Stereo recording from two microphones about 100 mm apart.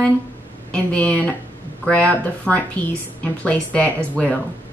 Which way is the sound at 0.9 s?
15° left (ahead or behind).